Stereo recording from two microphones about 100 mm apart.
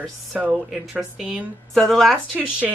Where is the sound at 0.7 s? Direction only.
5° right (ahead or behind).